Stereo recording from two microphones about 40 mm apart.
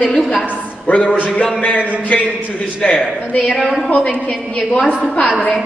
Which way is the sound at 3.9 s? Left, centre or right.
Left.